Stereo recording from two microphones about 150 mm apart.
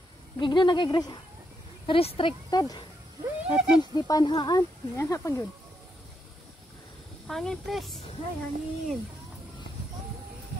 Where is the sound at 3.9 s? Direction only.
25° left (ahead or behind).